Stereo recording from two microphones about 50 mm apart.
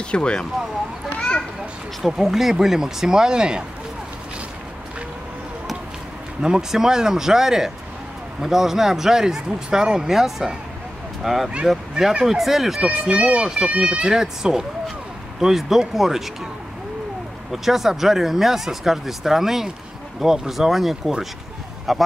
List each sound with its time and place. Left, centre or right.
0.1 s speech: centre
2.0 s speech: centre
6.4 s speech: centre
12.0 s speech: centre
13.1 s speech: right; by 16.3 s centre
17.5 s speech: centre